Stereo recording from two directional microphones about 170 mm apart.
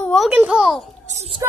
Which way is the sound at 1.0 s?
35° right (ahead or behind).